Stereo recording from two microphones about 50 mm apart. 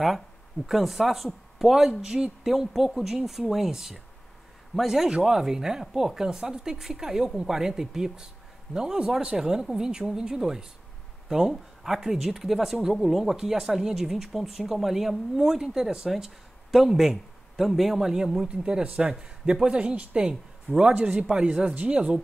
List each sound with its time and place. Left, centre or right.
0.7 s a man's voice: centre; by 22.2 s right